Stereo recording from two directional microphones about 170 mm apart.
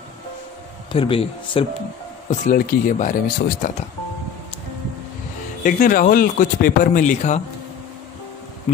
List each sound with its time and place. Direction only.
0.9 s speech: 30° left (ahead or behind)
2.4 s speech: 55° left (ahead or behind)
5.6 s speech: 55° left (ahead or behind)
8.7 s speech: 40° left (ahead or behind)